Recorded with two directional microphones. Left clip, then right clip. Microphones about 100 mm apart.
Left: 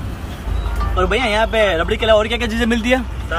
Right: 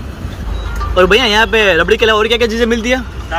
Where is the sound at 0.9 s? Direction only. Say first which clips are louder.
Right 7 dB; 60° right (ahead or behind); by 2.3 s 35° right (ahead or behind).